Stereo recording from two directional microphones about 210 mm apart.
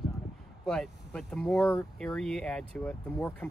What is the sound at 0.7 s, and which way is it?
Speech, 5° left (ahead or behind).